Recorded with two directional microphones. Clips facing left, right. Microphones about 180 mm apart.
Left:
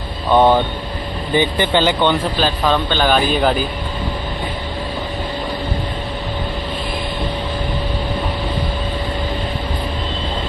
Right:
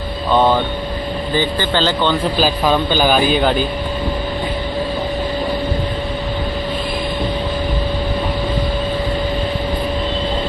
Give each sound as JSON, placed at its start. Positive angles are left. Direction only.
{"t": 0.3, "sound": "speech", "side_deg": 15}
{"t": 2.3, "sound": "a man's voice", "side_deg": -5}